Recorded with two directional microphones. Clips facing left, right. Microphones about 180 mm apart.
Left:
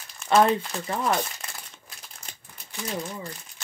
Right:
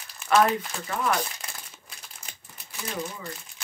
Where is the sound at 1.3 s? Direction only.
Centre (ahead or behind).